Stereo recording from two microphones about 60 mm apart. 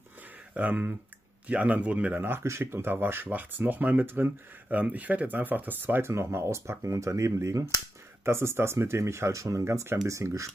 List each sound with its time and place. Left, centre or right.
0.6 s speech: right
2.1 s speech: right
6.0 s speech: right
8.2 s speech: right